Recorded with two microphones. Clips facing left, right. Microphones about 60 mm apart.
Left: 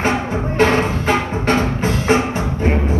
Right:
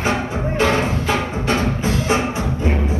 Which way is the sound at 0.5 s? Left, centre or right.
Left.